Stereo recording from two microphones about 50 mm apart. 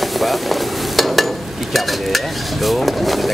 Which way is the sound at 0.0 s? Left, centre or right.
Centre.